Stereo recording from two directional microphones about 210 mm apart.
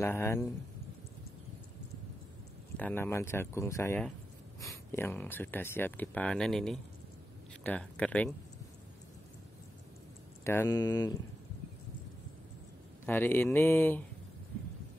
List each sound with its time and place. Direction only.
0.0 s speech: 10° left (ahead or behind)
2.8 s speech: 10° left (ahead or behind)
10.4 s speech: 10° left (ahead or behind)
13.0 s speech: 10° left (ahead or behind)